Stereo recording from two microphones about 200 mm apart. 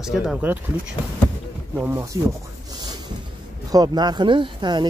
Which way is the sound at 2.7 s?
20° right (ahead or behind).